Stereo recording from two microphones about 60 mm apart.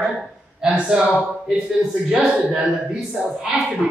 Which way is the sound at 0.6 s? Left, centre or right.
Centre.